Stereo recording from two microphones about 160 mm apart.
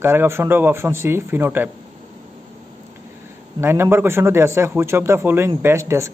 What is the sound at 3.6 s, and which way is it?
A man's voice, 15° right (ahead or behind).